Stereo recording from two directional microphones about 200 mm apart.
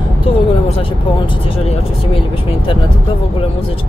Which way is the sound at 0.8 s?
25° left (ahead or behind).